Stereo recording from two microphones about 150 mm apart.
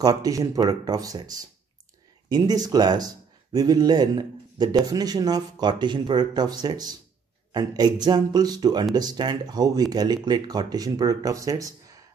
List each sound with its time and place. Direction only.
0.0 s a man's voice: 25° right (ahead or behind)